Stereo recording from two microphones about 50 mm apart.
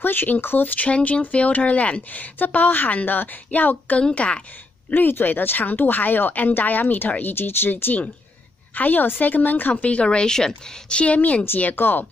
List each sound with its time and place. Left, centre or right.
0.0 s speech: left
4.9 s speech: left
11.4 s speech: left